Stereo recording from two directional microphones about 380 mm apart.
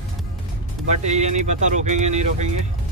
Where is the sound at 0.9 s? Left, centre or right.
Centre.